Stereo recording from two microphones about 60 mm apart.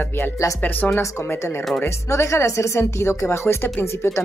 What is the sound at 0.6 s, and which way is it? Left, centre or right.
Speech, left.